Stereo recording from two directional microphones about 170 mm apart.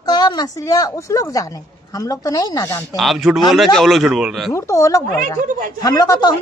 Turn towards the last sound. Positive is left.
turn(degrees=20)  # may be behind; listen again after turning